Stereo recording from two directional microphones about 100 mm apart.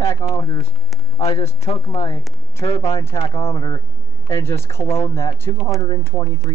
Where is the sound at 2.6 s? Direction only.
60° left (ahead or behind).